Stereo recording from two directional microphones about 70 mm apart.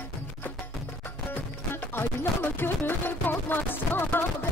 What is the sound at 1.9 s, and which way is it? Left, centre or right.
Speech, left.